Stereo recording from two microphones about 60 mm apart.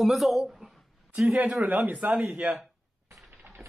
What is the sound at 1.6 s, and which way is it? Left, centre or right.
Speech, right.